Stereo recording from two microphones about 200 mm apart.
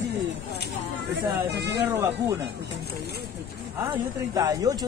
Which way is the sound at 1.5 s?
55° right (ahead or behind).